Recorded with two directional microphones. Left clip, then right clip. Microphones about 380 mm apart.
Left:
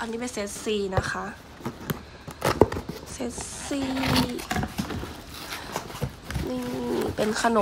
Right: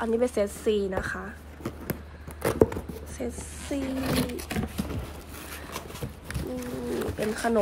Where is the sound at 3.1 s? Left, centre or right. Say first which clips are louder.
Left 1 dB; centre.